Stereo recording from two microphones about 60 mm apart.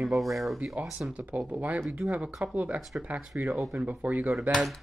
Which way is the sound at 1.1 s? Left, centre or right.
Right.